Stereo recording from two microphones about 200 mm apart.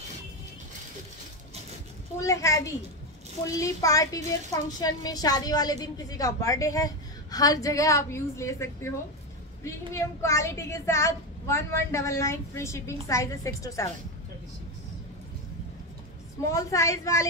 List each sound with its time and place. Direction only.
2.2 s a woman's voice: 15° left (ahead or behind)
9.9 s a woman's voice: 15° left (ahead or behind)
16.5 s a woman's voice: 15° left (ahead or behind)